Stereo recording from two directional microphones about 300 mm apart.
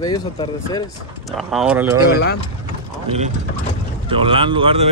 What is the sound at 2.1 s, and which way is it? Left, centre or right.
Speech, left.